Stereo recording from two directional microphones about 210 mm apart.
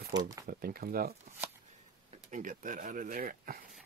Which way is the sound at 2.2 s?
40° right (ahead or behind).